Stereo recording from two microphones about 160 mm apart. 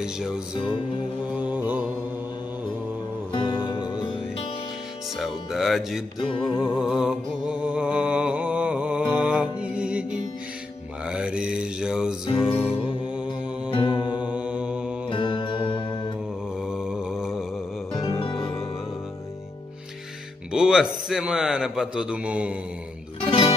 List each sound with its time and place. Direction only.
0.0 s a man's voice: 5° right (ahead or behind)
1.5 s mantra: 10° right (ahead or behind)
3.3 s music: 30° left (ahead or behind)
5.1 s a man's voice: centre (ahead or behind)
6.6 s music: 5° right (ahead or behind)
11.1 s mantra: 5° right (ahead or behind)
12.4 s music: 5° right (ahead or behind)
13.7 s music: 30° left (ahead or behind)
14.2 s mantra: 10° right (ahead or behind)
15.0 s music: 30° left (ahead or behind)
16.6 s mantra: 5° right (ahead or behind)
17.9 s music: 30° left (ahead or behind)
20.5 s a man's voice: 5° right (ahead or behind)
23.2 s music: 35° left (ahead or behind)